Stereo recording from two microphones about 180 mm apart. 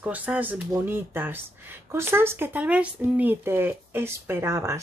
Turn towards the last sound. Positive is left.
turn(degrees=-15)  # may be behind; listen again after turning